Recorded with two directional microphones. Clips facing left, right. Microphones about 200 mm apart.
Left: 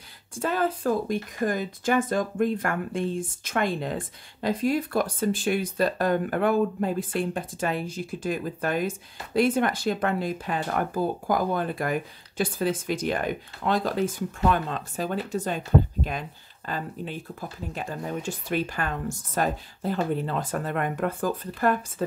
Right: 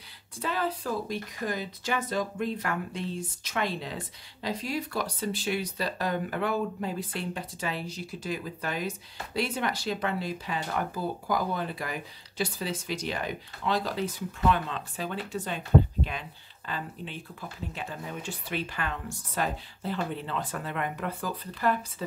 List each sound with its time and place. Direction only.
0.4 s speech: 50° left (ahead or behind)